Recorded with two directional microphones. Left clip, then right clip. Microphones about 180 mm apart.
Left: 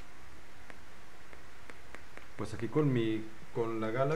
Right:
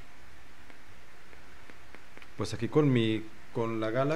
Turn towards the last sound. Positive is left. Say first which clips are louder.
# right 3 dB
turn(degrees=-55)  # may be behind; listen again after turning